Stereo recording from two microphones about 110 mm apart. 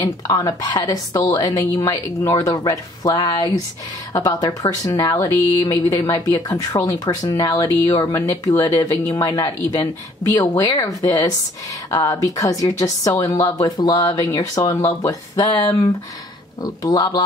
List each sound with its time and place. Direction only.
0.0 s a woman's voice: 35° left (ahead or behind)